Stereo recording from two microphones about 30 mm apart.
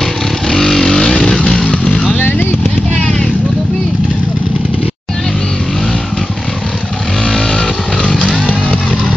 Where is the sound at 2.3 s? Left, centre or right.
Left.